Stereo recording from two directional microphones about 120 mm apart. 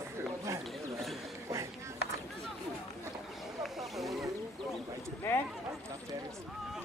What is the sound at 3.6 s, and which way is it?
Wild animals, centre (ahead or behind).